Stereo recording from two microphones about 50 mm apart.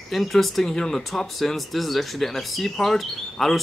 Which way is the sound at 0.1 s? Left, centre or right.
Centre.